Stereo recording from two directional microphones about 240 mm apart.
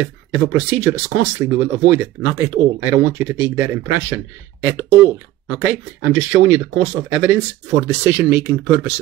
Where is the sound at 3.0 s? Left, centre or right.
Right.